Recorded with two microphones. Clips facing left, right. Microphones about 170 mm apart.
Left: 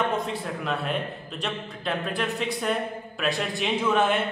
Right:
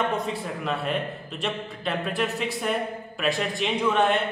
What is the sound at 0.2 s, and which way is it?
A man's voice, centre (ahead or behind).